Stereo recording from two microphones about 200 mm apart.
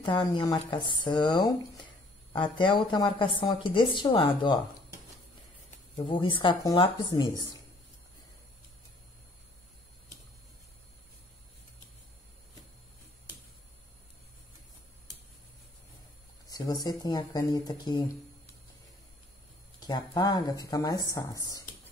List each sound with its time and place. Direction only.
0.0 s a woman's voice: 25° left (ahead or behind)
5.9 s a woman's voice: 25° left (ahead or behind)
16.4 s a woman's voice: 20° left (ahead or behind)
19.9 s a woman's voice: 20° left (ahead or behind)